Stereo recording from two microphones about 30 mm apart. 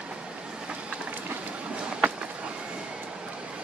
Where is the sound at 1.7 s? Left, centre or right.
Right.